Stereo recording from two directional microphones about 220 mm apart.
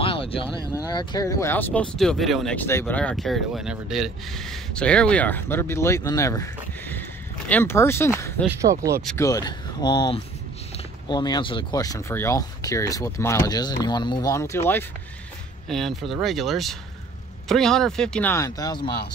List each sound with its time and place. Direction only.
0.0 s a sound: 25° left (ahead or behind)
0.7 s speech: 20° left (ahead or behind)
8.5 s speech: 15° right (ahead or behind)
9.0 s speech: 10° left (ahead or behind)